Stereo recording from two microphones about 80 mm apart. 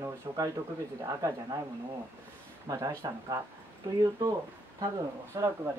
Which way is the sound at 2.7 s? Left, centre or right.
Right.